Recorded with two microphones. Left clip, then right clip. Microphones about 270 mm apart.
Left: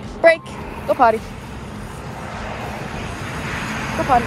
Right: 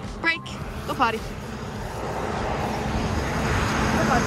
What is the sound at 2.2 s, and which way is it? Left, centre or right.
Vehicle, right.